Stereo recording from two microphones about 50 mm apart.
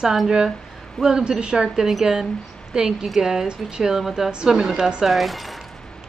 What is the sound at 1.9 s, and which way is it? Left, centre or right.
Speech, centre.